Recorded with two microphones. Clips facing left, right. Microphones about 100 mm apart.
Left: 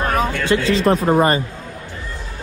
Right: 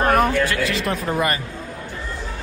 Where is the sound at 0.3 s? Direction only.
25° left (ahead or behind).